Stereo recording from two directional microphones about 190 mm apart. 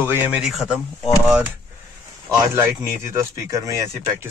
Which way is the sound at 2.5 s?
15° right (ahead or behind).